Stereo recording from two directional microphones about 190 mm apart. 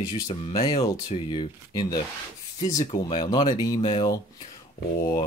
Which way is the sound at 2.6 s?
40° left (ahead or behind).